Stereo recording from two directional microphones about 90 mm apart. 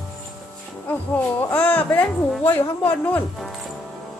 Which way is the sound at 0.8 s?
20° left (ahead or behind).